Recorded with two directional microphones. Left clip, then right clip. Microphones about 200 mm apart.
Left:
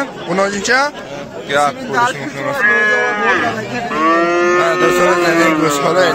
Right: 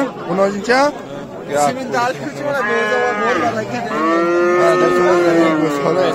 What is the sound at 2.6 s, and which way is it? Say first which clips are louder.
A man's voice: left 6 dB; 55° right (ahead or behind).